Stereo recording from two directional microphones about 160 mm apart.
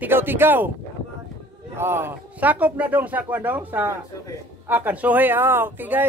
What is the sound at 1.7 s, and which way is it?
Speech, 15° right (ahead or behind).